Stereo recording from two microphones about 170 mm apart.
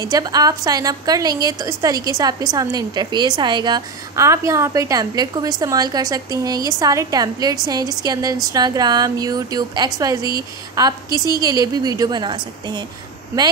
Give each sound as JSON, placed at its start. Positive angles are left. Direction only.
{"t": 0.0, "sound": "a woman's voice", "side_deg": -20}